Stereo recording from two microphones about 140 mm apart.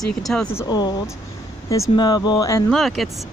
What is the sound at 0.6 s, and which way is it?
Speech, 30° left (ahead or behind).